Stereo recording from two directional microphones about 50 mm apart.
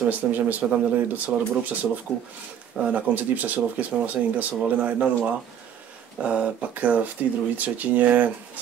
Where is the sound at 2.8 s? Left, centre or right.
Right.